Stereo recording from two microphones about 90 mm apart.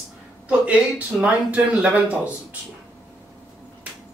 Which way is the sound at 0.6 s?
15° right (ahead or behind).